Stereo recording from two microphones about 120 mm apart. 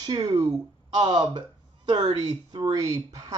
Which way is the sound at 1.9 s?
40° right (ahead or behind).